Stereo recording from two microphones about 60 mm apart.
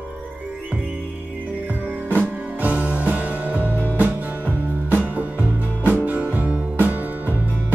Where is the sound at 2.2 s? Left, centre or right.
Right.